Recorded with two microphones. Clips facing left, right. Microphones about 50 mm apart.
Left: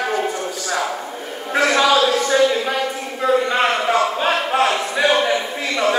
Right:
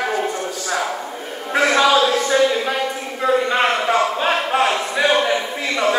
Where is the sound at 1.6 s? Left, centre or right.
Centre.